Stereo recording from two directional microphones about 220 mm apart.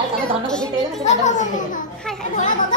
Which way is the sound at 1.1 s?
35° left (ahead or behind).